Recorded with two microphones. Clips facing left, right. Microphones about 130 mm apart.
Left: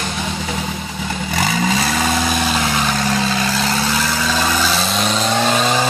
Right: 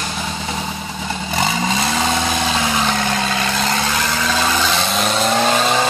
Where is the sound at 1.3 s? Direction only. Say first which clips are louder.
Left 1 dB; 25° right (ahead or behind).